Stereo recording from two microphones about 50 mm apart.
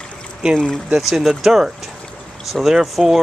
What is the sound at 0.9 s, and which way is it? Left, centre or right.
Speech, centre.